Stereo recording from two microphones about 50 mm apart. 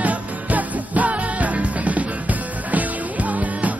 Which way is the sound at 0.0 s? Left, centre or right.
Right.